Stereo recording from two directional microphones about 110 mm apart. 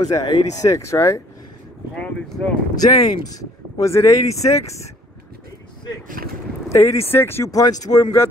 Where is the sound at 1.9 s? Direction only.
10° left (ahead or behind).